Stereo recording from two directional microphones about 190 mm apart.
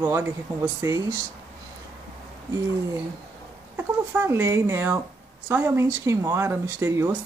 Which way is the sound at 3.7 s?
10° right (ahead or behind).